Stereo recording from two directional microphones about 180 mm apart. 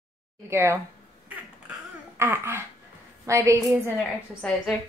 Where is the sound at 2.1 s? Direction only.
15° right (ahead or behind).